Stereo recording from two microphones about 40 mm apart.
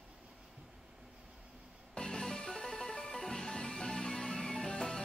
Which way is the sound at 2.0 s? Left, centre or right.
Centre.